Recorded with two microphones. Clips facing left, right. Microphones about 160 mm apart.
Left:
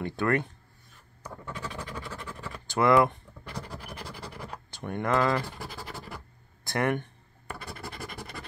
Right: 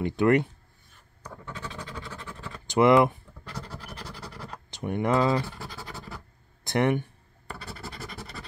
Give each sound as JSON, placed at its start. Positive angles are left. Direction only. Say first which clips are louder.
{"t": 0.0, "sound": "speech", "louder": "right 5 dB", "side_deg": -20}
{"t": 1.2, "sound": "scratch", "louder": "left 1 dB", "side_deg": 10}
{"t": 2.6, "sound": "speech", "louder": "right 3 dB", "side_deg": -20}
{"t": 3.4, "sound": "scratch", "louder": "even", "side_deg": 15}
{"t": 4.6, "sound": "speech", "louder": "right 3 dB", "side_deg": -15}
{"t": 5.5, "sound": "speech", "louder": "even", "side_deg": 15}
{"t": 6.6, "sound": "a sound", "louder": "right 4 dB", "side_deg": -20}
{"t": 7.4, "sound": "scratch", "louder": "even", "side_deg": 15}